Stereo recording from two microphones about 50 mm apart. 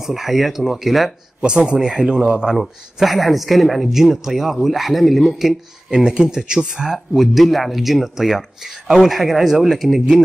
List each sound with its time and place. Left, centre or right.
0.0 s speech: centre
1.7 s speech: centre
2.5 s speech: centre
5.9 s speech: centre
6.9 s speech: centre